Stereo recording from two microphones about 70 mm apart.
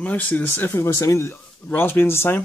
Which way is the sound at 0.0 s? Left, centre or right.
Left.